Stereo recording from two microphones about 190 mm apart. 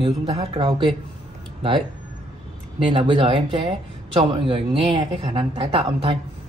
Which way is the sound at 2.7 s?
25° right (ahead or behind).